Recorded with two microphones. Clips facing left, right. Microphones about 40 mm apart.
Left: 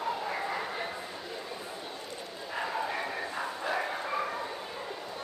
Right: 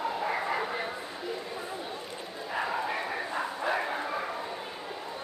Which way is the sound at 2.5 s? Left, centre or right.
Centre.